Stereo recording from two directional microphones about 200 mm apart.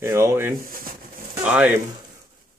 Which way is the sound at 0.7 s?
45° right (ahead or behind).